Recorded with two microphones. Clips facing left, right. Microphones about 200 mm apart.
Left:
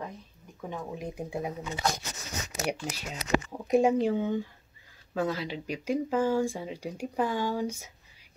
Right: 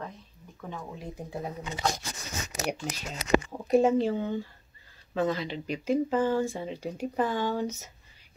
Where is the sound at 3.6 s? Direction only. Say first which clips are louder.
Left 1 dB; 15° left (ahead or behind).